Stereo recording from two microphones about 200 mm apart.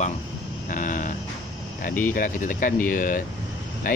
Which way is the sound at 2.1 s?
40° left (ahead or behind).